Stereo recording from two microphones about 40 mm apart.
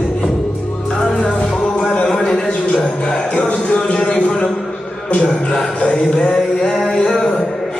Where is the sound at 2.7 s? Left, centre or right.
Centre.